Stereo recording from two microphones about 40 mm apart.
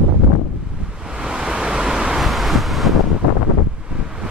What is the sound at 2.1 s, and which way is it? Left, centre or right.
Wind noise, centre.